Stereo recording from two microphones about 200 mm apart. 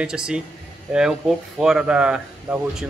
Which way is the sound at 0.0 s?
5° right (ahead or behind).